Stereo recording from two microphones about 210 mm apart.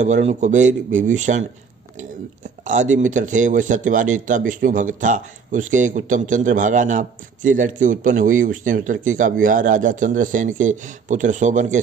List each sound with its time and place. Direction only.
0.0 s speech: 35° right (ahead or behind)
2.6 s speech: 35° right (ahead or behind)